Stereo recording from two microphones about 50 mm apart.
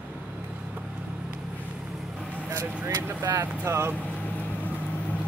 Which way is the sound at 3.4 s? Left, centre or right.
Right.